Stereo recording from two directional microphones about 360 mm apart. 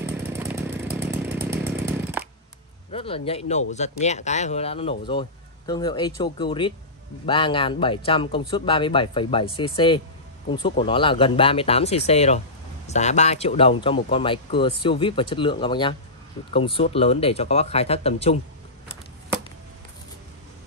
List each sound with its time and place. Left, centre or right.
0.0 s chainsaw: centre
2.9 s speech: centre